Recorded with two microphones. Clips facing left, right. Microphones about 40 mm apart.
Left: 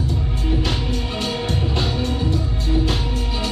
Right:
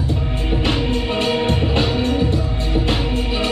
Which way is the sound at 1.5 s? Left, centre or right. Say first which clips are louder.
Right 5 dB; right.